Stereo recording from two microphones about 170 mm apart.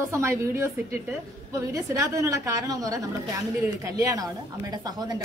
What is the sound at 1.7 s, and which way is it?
A woman's voice, 20° right (ahead or behind).